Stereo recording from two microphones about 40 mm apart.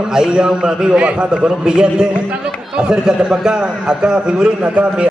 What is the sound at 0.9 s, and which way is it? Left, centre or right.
A man's voice, right.